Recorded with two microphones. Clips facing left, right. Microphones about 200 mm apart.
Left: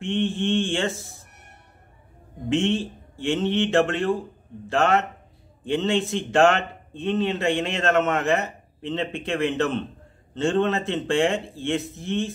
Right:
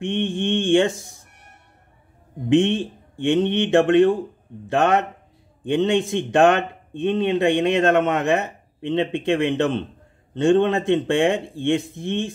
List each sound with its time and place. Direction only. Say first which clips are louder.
0.0 s speech: right 1 dB; 15° right (ahead or behind)
2.5 s speech: right 5 dB; 15° right (ahead or behind)